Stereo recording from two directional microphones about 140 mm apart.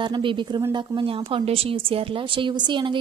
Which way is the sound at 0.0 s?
35° right (ahead or behind).